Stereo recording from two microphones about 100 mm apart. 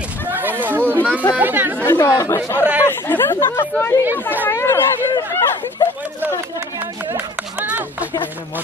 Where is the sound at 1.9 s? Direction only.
30° left (ahead or behind).